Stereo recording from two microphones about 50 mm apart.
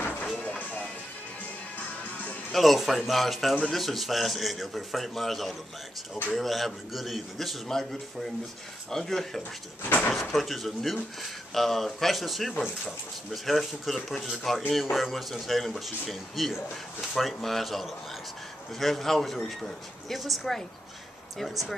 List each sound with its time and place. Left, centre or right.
2.5 s speech: centre
8.9 s speech: centre
9.8 s speech: left
10.3 s speech: centre